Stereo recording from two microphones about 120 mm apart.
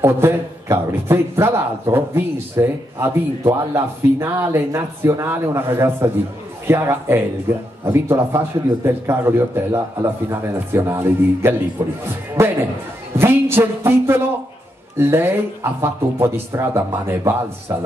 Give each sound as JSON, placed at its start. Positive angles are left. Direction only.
{"t": 0.0, "sound": "a man's voice", "side_deg": -20}